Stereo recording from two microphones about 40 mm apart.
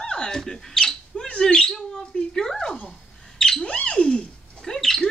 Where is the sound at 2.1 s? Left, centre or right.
Centre.